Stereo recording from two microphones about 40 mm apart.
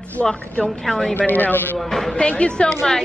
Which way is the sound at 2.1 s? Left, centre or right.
Left.